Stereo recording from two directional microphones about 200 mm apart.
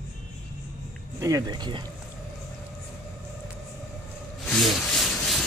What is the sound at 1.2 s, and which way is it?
Speech, 20° right (ahead or behind).